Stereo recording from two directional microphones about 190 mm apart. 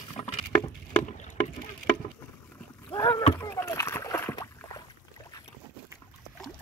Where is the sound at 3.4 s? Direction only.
15° left (ahead or behind).